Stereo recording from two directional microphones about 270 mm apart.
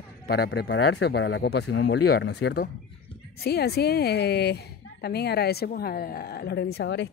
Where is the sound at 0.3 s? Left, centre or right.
Left.